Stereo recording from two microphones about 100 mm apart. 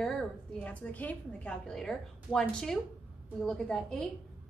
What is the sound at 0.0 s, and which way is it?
A woman's voice, 5° left (ahead or behind).